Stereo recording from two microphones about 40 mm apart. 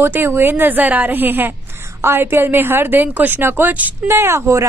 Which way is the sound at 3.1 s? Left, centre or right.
Right.